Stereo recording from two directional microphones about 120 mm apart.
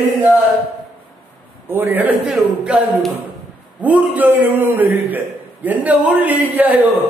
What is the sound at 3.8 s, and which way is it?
A man's voice, 10° right (ahead or behind).